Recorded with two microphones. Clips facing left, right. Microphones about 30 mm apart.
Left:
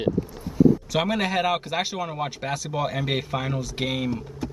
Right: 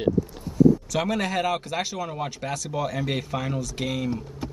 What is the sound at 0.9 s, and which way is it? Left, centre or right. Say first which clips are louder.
Speech: left 2 dB; centre.